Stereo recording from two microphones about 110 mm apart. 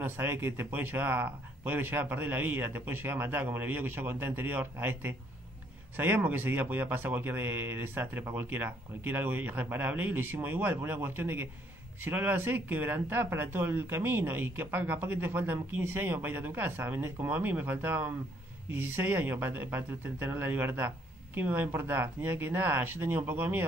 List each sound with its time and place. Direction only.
0.0 s speech: 20° right (ahead or behind)